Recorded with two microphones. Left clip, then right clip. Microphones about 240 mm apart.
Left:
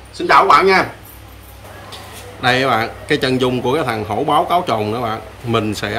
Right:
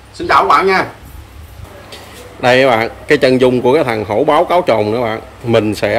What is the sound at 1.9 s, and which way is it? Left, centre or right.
Speech, centre.